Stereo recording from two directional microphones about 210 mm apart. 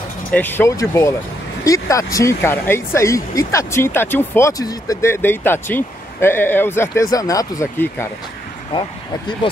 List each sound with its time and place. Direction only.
0.3 s speech: 10° left (ahead or behind)
8.7 s speech: 25° left (ahead or behind)